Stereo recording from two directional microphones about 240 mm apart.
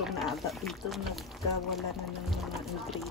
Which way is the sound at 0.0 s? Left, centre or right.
Centre.